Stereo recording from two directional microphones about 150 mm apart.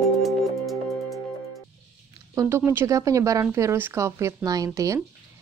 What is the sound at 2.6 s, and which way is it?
A woman's voice, 15° right (ahead or behind).